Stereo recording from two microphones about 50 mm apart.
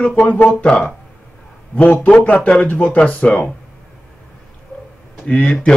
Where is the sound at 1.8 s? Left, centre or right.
Left.